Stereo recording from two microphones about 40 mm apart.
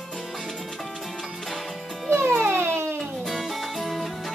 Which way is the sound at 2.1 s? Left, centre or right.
Right.